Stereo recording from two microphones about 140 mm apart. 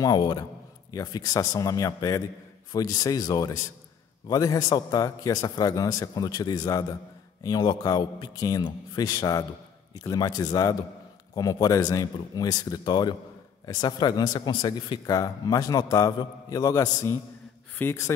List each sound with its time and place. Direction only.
0.0 s a man's voice: 30° left (ahead or behind)